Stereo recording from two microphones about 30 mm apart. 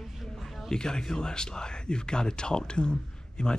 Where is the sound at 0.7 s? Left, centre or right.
Left.